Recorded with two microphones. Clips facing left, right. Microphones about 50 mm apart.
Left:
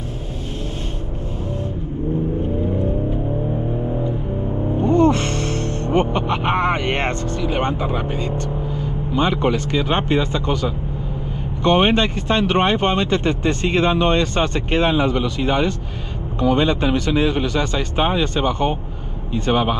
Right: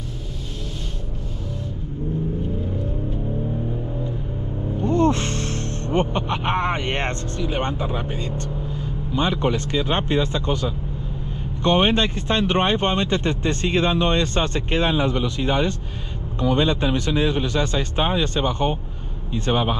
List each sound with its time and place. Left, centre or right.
4.7 s music: left
7.4 s vehicle: left
9.1 s speech: left
11.6 s speech: left